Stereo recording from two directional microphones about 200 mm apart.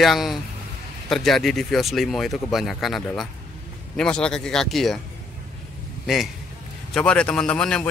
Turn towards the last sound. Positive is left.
turn(degrees=5)  # may be behind; listen again after turning